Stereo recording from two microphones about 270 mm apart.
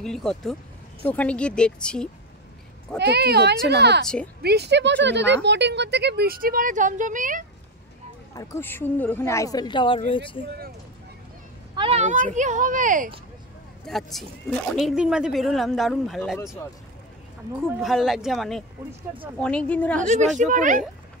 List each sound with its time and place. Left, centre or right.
0.0 s speech: centre
3.0 s speech: right
8.4 s a woman's voice: centre
11.7 s speech: centre
13.8 s speech: centre
17.7 s speech: centre
20.0 s speech: right